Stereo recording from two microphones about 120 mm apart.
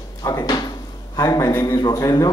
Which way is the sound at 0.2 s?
30° left (ahead or behind).